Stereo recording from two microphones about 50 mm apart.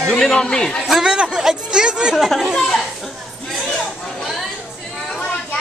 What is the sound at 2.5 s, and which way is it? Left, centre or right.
Speech, centre.